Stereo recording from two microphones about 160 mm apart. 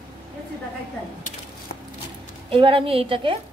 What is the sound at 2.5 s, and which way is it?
Speech, 35° right (ahead or behind).